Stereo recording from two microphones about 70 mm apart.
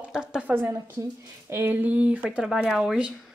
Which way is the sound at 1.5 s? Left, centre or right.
Right.